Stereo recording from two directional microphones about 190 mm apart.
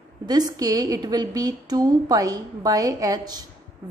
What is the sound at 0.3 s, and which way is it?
A woman's voice, 20° right (ahead or behind).